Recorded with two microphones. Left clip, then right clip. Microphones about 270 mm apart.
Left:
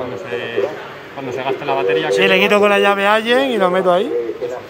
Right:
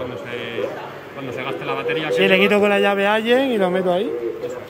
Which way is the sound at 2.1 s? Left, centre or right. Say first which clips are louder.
Left 2 dB; centre.